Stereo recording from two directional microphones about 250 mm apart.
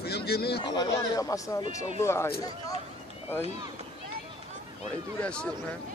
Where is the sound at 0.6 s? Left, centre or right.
Centre.